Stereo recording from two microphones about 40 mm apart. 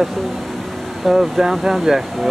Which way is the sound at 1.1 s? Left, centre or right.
Centre.